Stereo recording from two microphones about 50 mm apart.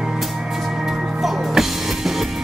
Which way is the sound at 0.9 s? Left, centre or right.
Centre.